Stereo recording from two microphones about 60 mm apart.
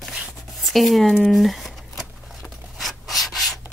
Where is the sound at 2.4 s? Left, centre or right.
Centre.